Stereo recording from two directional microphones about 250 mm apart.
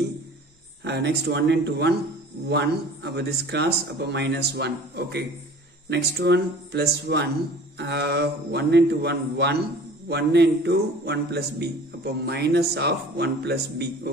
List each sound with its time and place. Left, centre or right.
0.8 s a man's voice: right